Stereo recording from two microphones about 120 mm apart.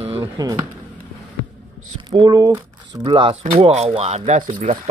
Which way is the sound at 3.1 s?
45° right (ahead or behind).